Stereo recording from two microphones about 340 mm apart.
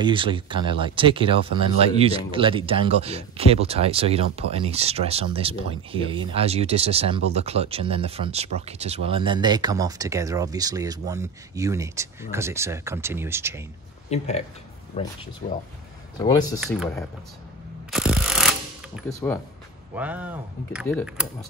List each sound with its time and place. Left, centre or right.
0.0 s speech: centre
14.1 s speech: centre
16.5 s speech: centre
17.9 s mechanisms: centre
20.0 s speech: centre